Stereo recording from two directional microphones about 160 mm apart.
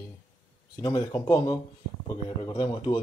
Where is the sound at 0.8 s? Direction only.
25° left (ahead or behind).